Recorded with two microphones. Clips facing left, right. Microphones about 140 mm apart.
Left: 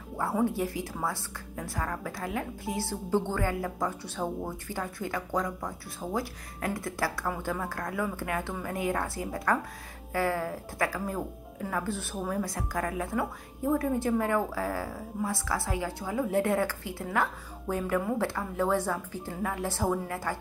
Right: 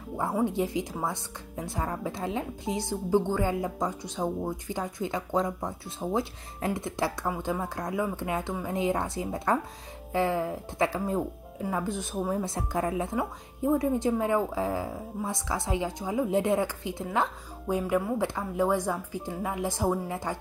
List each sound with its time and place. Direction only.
0.2 s speech: 20° right (ahead or behind)